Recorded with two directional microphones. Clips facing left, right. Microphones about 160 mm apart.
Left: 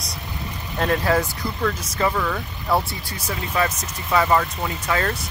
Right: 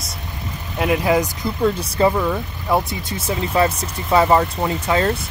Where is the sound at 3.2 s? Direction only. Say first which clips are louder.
Right 5 dB; 25° right (ahead or behind).